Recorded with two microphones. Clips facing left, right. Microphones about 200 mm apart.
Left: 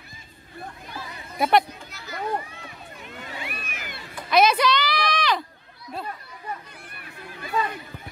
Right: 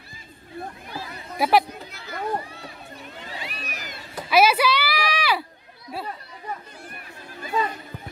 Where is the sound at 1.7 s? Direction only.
55° right (ahead or behind).